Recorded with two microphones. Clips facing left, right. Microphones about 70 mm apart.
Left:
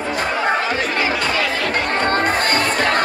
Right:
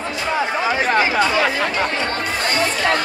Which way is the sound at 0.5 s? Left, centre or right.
Centre.